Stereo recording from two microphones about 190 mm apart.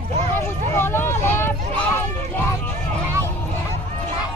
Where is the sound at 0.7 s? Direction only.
10° left (ahead or behind).